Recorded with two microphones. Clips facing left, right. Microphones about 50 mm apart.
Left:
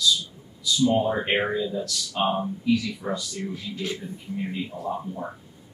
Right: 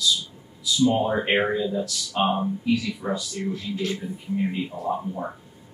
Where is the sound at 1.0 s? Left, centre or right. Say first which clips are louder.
Right 1 dB; centre.